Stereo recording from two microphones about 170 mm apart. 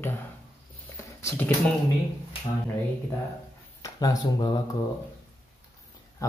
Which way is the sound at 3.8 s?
20° left (ahead or behind).